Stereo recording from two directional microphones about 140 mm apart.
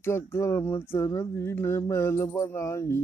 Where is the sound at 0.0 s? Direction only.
20° left (ahead or behind).